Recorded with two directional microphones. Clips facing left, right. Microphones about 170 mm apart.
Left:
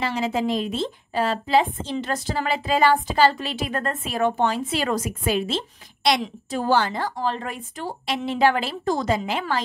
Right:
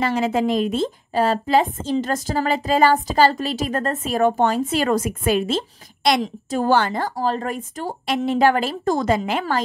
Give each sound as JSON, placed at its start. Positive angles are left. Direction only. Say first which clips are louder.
{"t": 0.0, "sound": "a woman's voice", "louder": "right 4 dB", "side_deg": -50}